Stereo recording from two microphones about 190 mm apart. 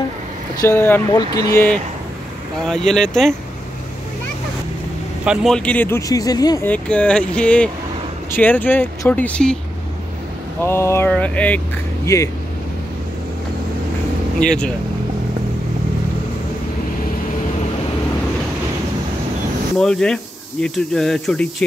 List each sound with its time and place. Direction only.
0.6 s speech: 10° left (ahead or behind)
5.2 s speech: 5° right (ahead or behind); by 6.7 s 20° left (ahead or behind)
6.7 s speech: 5° left (ahead or behind)
10.6 s speech: 15° left (ahead or behind)
14.4 s speech: 5° left (ahead or behind)
19.8 s speech: 5° left (ahead or behind)